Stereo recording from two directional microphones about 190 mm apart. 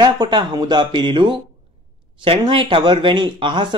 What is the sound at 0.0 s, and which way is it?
Speech, 20° right (ahead or behind).